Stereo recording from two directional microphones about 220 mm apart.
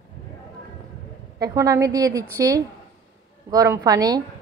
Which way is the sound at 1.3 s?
15° right (ahead or behind).